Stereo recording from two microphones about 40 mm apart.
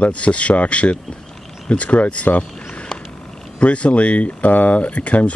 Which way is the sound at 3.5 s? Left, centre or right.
Left.